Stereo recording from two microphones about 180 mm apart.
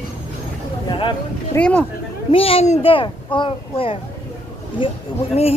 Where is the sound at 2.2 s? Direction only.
30° left (ahead or behind).